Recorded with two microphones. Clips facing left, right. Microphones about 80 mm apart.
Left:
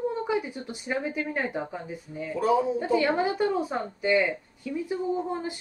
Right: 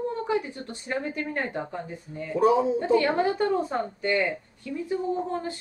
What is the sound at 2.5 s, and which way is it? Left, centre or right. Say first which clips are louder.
Speech: right 2 dB; right.